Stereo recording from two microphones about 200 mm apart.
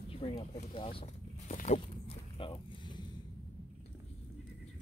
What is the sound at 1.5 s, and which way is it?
Walk, 35° left (ahead or behind).